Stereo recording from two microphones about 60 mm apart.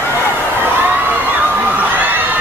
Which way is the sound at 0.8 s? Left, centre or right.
Right.